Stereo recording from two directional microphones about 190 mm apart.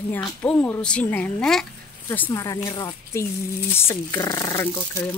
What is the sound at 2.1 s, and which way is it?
A woman's voice, 15° left (ahead or behind).